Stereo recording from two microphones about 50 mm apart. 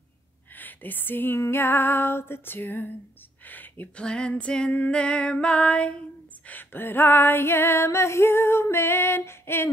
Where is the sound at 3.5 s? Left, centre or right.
Left.